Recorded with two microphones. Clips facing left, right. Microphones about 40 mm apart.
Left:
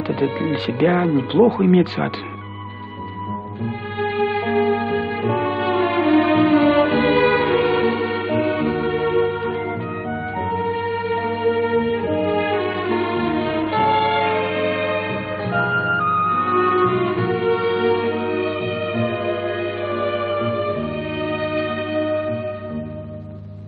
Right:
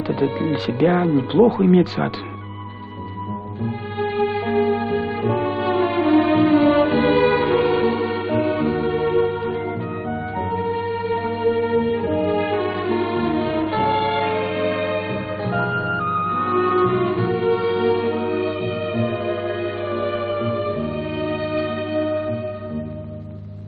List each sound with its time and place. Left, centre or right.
0.1 s speech: left
4.0 s music: left